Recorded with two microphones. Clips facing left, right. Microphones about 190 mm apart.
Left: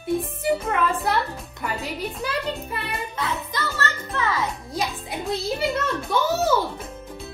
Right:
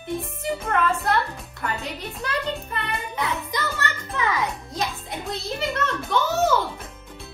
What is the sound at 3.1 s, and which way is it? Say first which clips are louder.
A child's voice: right 2 dB; 15° right (ahead or behind).